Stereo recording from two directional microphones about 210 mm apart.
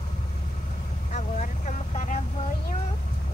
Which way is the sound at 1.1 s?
35° left (ahead or behind).